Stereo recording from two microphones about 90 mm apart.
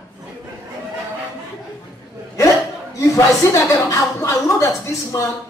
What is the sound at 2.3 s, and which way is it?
Chuckle, 35° left (ahead or behind).